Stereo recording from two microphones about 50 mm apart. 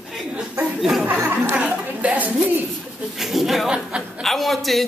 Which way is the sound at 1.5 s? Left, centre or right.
Right.